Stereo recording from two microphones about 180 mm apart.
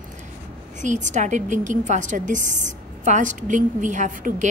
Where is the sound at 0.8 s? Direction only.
40° right (ahead or behind).